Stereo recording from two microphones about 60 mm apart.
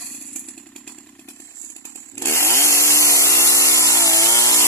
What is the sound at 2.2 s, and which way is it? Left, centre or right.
Chainsaw, left.